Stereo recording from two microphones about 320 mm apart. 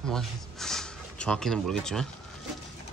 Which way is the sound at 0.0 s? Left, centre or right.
Centre.